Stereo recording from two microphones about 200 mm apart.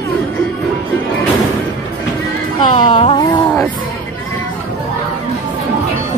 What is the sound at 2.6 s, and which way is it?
Speech, 25° left (ahead or behind).